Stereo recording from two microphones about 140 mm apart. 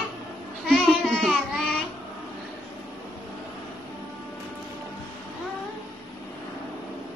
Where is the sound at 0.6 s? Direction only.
Centre (ahead or behind).